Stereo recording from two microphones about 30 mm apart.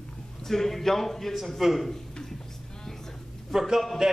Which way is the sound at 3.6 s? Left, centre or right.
Centre.